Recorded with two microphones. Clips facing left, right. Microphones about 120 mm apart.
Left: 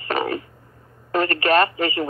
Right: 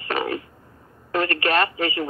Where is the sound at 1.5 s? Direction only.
40° left (ahead or behind).